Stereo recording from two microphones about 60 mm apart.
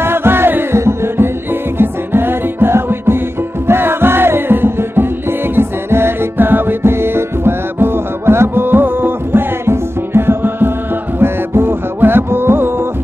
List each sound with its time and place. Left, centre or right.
0.0 s music: right